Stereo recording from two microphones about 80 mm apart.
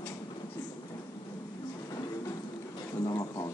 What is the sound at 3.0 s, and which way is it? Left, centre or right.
Speech, left.